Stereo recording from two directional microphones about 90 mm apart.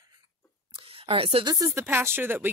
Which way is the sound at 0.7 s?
90° right.